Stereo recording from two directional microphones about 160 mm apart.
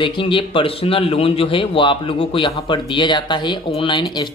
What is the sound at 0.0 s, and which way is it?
A man's voice, 30° left (ahead or behind).